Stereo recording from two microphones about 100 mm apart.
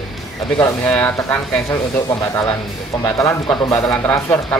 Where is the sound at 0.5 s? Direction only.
15° left (ahead or behind); by 3.4 s 30° left (ahead or behind).